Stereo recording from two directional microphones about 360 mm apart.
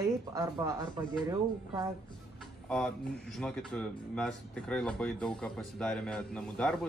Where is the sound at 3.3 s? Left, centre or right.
Centre.